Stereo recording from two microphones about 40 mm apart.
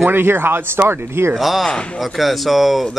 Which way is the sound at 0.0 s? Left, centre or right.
Right.